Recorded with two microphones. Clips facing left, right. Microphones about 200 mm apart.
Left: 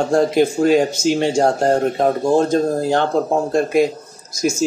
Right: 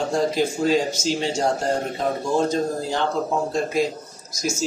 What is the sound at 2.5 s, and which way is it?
Speech, 60° left (ahead or behind).